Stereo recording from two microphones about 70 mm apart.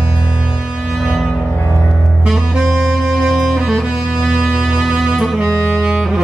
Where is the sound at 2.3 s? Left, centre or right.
Centre.